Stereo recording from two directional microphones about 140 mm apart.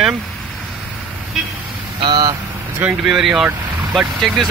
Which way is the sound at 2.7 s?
10° right (ahead or behind).